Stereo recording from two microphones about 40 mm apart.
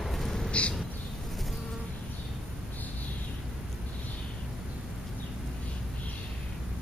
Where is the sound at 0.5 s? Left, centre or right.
Left.